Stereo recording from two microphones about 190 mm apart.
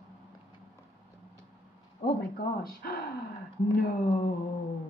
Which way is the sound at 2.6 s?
50° left (ahead or behind).